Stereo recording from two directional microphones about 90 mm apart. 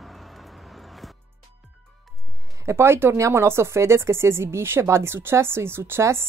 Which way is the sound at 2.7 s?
30° right (ahead or behind).